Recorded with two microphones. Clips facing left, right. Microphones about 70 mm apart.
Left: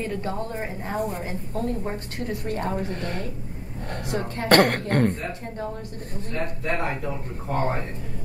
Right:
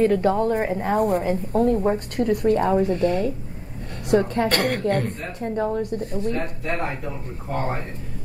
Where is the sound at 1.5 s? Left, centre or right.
Right.